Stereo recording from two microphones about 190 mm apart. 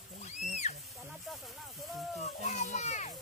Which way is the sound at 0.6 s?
35° left (ahead or behind).